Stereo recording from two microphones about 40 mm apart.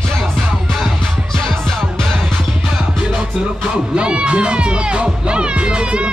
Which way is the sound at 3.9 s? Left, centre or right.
Right.